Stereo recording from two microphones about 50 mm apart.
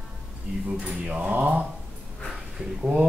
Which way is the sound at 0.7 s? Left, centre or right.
Right.